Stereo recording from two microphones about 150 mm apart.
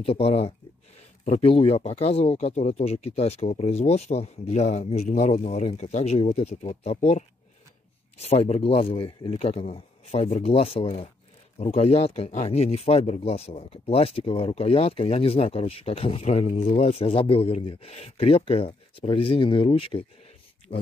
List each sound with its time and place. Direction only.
0.0 s speech: 40° left (ahead or behind)